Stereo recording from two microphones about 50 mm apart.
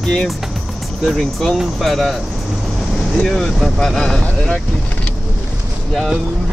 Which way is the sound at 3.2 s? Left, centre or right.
Centre.